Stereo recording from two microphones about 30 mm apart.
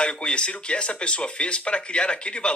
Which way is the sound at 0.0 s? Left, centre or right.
Left.